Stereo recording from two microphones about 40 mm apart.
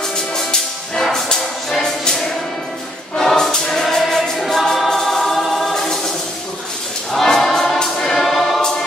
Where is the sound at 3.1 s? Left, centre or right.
Centre.